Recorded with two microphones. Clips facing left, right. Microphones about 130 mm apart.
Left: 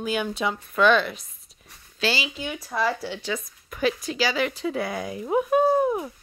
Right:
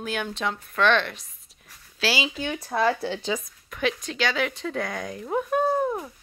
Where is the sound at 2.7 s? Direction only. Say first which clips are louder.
Right 2 dB; 55° right (ahead or behind).